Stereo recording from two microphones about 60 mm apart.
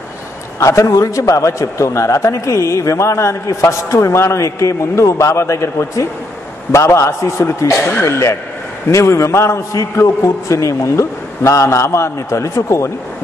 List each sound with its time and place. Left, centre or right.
0.6 s a man's voice: left
10.0 s a man's voice: left